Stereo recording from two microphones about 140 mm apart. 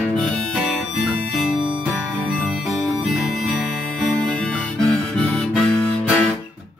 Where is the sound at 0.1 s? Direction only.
5° left (ahead or behind).